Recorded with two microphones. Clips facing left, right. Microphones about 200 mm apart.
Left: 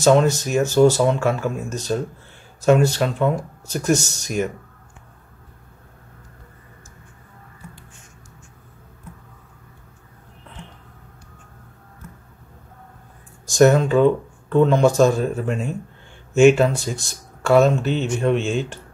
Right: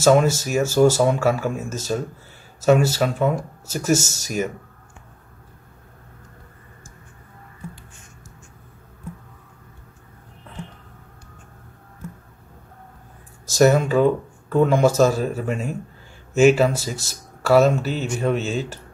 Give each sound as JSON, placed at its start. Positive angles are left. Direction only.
{"t": 0.0, "sound": "speech", "side_deg": -5}
{"t": 3.9, "sound": "speech", "side_deg": -45}
{"t": 13.5, "sound": "speech", "side_deg": -5}
{"t": 18.3, "sound": "speech", "side_deg": -40}